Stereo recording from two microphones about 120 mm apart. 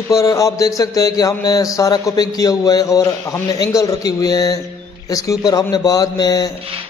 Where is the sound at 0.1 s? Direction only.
30° left (ahead or behind).